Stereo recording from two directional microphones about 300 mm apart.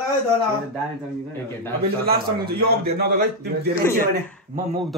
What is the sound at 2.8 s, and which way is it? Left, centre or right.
Speech, right.